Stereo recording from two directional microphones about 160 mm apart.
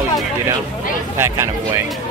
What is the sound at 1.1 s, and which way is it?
Speech, 15° right (ahead or behind).